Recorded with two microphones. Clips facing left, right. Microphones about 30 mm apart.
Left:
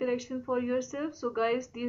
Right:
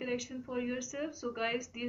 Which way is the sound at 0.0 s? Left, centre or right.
Centre.